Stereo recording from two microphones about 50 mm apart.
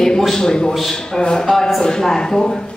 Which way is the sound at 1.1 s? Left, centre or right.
Centre.